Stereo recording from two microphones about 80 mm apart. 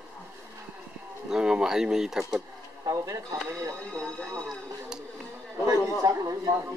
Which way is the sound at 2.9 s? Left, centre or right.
Right.